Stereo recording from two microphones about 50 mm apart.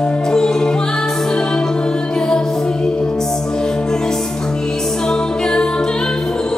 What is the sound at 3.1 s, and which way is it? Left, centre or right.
Music, centre.